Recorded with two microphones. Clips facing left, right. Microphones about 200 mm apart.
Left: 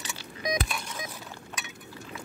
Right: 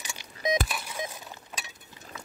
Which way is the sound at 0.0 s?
15° right (ahead or behind).